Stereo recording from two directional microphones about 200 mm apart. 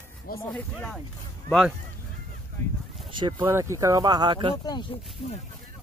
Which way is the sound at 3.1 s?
20° right (ahead or behind).